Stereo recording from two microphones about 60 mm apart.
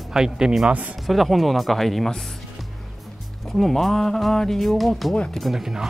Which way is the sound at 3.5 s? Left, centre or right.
Centre.